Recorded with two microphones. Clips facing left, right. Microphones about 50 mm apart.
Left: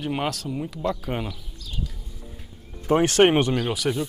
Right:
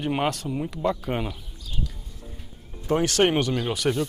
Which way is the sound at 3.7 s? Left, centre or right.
Centre.